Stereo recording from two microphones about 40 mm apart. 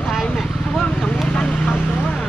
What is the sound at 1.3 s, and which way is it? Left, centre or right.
Vehicle, left.